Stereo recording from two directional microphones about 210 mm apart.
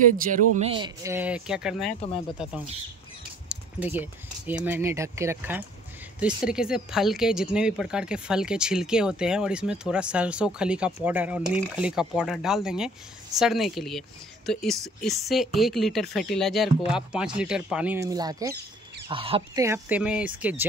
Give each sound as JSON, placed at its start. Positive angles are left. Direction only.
{"t": 0.2, "sound": "speech", "side_deg": -40}
{"t": 3.5, "sound": "a sound", "side_deg": -5}
{"t": 3.8, "sound": "speech", "side_deg": -10}
{"t": 19.6, "sound": "speech", "side_deg": -10}